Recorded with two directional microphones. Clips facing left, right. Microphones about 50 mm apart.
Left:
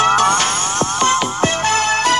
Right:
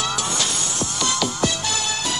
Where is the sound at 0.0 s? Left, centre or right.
Left.